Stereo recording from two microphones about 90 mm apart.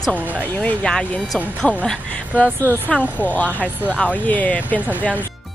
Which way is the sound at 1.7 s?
15° left (ahead or behind).